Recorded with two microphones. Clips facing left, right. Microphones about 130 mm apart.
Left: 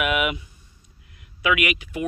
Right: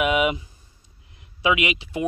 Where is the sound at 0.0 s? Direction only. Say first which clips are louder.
Right 3 dB; 25° right (ahead or behind).